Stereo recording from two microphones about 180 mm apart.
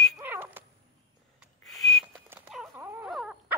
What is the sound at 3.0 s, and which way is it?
Wail, 5° right (ahead or behind).